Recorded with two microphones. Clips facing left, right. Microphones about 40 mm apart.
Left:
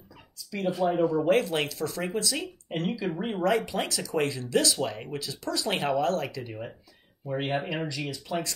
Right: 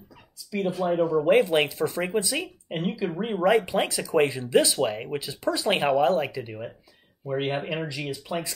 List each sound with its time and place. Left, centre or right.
0.4 s speech: centre
1.3 s speech: right
2.7 s speech: centre